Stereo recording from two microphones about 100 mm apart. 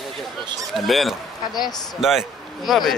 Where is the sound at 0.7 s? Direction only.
Centre (ahead or behind).